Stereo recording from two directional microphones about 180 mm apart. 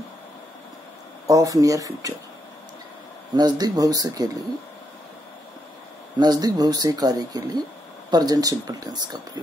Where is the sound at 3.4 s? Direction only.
20° right (ahead or behind).